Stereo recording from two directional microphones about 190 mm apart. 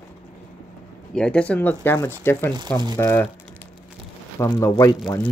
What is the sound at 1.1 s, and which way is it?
Speech, 5° left (ahead or behind).